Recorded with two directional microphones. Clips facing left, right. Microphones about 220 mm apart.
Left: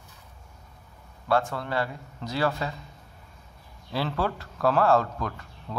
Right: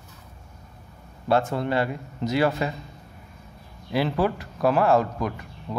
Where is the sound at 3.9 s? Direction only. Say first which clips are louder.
Right 5 dB; 15° right (ahead or behind).